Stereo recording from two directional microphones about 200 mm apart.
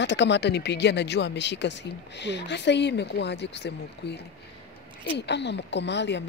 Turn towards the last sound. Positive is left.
turn(degrees=60)  # may be behind; listen again after turning